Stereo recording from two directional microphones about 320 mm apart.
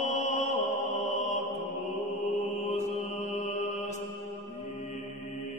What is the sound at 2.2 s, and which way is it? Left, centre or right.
Mantra, left.